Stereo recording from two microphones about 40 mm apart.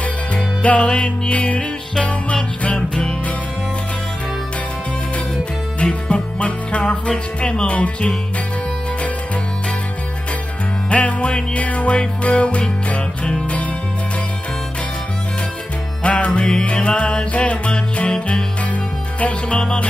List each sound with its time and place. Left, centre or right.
0.6 s music: left
6.0 s music: left
7.1 s speech: left
10.9 s music: left
16.0 s music: left
16.3 s speech: left
17.3 s music: left
19.6 s speech: left